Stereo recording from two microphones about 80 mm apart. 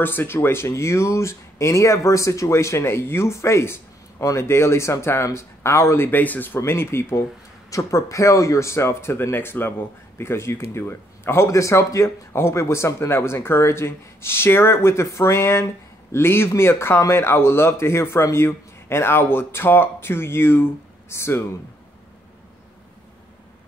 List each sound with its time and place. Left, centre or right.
0.0 s speech: left
6.0 s speech: left